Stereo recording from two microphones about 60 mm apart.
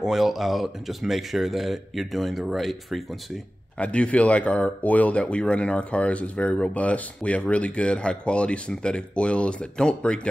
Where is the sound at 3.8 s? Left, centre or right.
Left.